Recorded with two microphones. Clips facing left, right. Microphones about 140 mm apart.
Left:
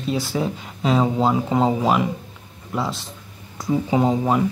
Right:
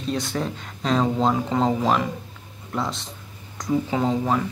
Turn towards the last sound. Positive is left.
turn(degrees=15)  # may be behind; listen again after turning